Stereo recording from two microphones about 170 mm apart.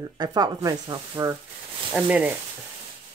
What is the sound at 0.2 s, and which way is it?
Speech, 25° right (ahead or behind).